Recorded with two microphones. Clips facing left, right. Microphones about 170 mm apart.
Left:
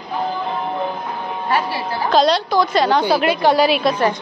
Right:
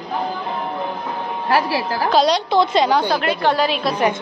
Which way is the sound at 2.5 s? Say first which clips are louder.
Even; 25° right (ahead or behind).